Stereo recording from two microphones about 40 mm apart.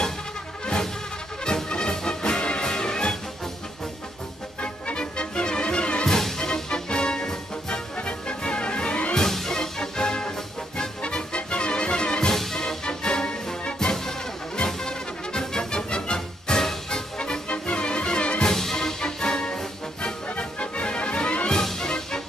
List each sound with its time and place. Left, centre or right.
1.4 s music: centre
4.6 s music: left
6.0 s music: centre; by 9.1 s left
9.1 s music: centre
12.3 s music: centre
17.2 s music: left
18.4 s music: centre
20.3 s music: left
21.5 s music: centre